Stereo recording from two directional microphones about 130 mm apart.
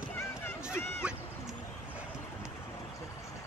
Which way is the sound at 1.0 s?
10° right (ahead or behind).